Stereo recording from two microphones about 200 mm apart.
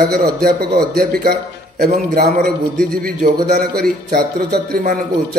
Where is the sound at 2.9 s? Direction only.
45° right (ahead or behind).